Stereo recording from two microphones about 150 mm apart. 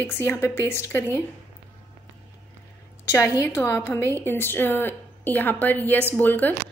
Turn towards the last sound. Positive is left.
turn(degrees=10)  # may be behind; listen again after turning